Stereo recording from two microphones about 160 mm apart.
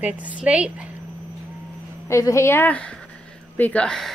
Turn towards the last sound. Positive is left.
turn(degrees=5)  # may be behind; listen again after turning